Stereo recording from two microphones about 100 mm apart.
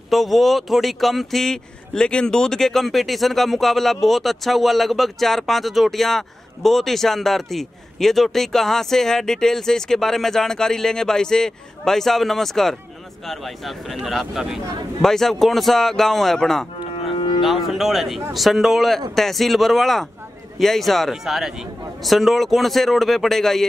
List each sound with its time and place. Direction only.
0.1 s speech: centre (ahead or behind)
17.1 s livestock: 55° left (ahead or behind)
17.4 s speech: centre (ahead or behind)